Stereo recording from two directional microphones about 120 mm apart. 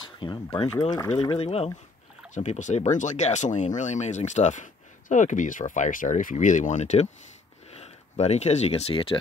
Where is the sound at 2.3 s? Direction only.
90° left.